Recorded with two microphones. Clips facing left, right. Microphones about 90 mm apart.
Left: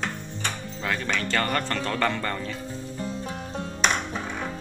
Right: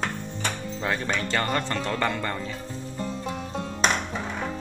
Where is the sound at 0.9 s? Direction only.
20° right (ahead or behind).